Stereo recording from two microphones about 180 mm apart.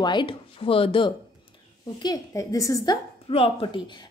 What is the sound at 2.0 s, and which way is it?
Speech, 20° left (ahead or behind).